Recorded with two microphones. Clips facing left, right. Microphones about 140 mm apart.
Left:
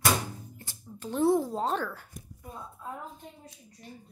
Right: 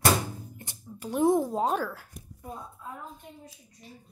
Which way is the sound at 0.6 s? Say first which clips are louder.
Even; 15° right (ahead or behind).